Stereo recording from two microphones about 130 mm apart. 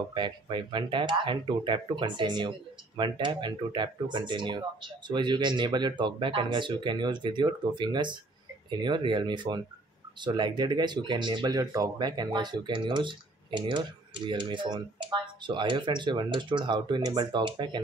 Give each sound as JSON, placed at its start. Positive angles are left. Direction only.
{"t": 0.1, "sound": "speech", "side_deg": -40}